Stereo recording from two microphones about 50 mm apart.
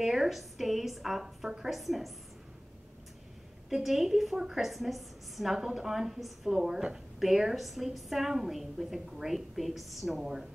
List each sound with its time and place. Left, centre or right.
0.0 s a woman's voice: centre
3.7 s a woman's voice: centre
6.6 s a woman's voice: centre